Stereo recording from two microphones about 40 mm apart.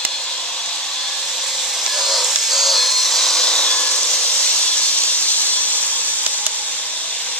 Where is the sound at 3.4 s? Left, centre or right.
Left.